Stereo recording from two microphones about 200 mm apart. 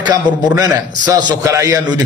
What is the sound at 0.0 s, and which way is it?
A man's voice, 20° right (ahead or behind).